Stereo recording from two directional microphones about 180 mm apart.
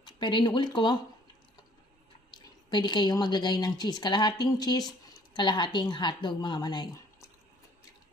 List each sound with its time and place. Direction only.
0.0 s speech: 25° left (ahead or behind)
2.3 s a woman's voice: 25° left (ahead or behind)